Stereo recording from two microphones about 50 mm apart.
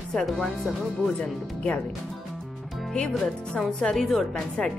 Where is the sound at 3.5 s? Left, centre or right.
Centre.